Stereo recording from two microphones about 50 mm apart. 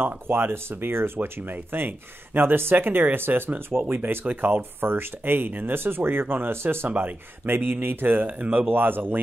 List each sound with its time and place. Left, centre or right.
0.0 s speech: right
1.5 s speech: right
6.9 s speech: right